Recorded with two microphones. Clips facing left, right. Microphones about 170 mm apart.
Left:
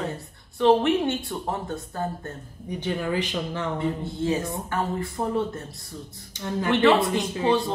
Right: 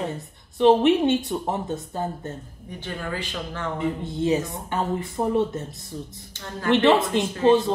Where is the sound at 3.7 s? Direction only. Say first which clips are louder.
Right 1 dB; 20° right (ahead or behind).